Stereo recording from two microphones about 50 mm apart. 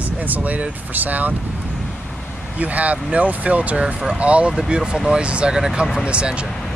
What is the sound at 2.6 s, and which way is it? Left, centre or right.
Speech, right.